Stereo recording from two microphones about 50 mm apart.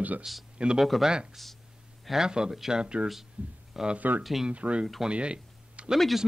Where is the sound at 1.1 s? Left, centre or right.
Centre.